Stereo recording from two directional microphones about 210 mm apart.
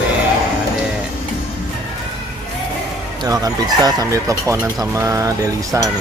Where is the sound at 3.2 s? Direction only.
15° right (ahead or behind).